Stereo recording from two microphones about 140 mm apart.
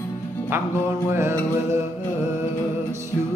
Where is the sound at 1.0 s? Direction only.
20° right (ahead or behind).